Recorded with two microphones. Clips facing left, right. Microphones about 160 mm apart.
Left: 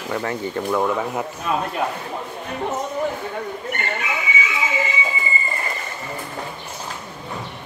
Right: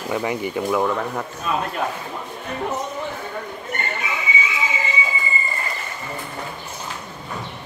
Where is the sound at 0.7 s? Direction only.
5° left (ahead or behind).